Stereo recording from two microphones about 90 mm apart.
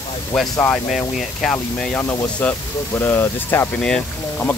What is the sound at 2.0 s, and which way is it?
Speech, 35° left (ahead or behind).